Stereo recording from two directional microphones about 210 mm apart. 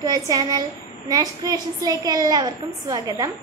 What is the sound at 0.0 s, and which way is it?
A woman's voice, 20° right (ahead or behind).